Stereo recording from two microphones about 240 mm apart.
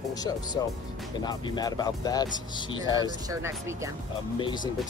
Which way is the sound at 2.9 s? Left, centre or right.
Centre.